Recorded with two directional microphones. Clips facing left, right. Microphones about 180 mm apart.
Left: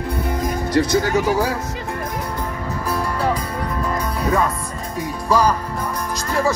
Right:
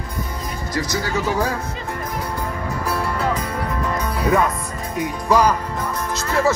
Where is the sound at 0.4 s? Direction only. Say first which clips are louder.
Left 8 dB; 55° left (ahead or behind).